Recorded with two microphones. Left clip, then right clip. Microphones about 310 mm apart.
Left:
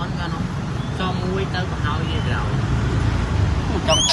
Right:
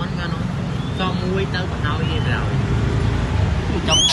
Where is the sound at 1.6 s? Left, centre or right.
Right.